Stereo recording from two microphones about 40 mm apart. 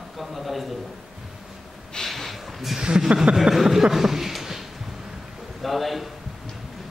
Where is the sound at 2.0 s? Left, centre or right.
Centre.